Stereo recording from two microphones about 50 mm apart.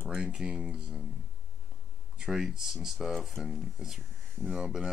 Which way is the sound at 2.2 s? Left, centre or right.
Centre.